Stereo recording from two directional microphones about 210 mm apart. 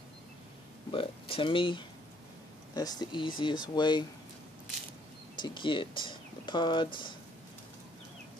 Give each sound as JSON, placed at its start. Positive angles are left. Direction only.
{"t": 0.9, "sound": "speech", "side_deg": 25}
{"t": 5.4, "sound": "speech", "side_deg": 25}